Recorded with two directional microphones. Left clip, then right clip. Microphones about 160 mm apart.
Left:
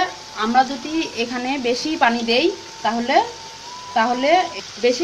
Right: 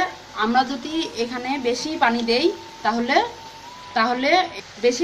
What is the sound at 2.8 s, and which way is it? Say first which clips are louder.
Speech: left 2 dB; 25° left (ahead or behind).